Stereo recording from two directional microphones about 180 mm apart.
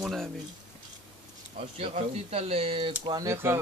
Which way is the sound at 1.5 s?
35° right (ahead or behind).